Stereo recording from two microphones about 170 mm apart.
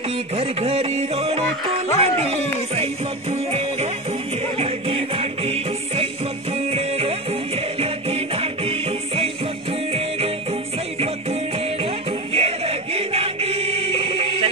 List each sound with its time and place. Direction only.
0.4 s music: 35° right (ahead or behind)
2.0 s speech: 35° right (ahead or behind)
4.6 s music: 35° right (ahead or behind)
12.4 s music: 35° right (ahead or behind)